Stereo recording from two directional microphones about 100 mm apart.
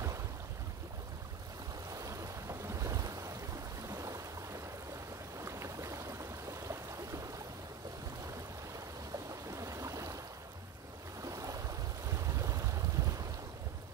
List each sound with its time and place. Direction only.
1.9 s waves: 35° right (ahead or behind)
3.9 s a sound: 30° right (ahead or behind)
9.3 s stream: 30° right (ahead or behind)
11.2 s waves: 35° right (ahead or behind)
12.1 s boat: 35° right (ahead or behind)